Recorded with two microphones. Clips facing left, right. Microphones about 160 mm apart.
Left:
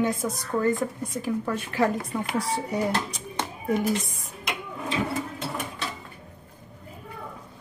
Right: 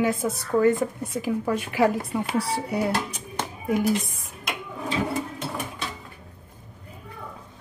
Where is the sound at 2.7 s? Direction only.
10° right (ahead or behind).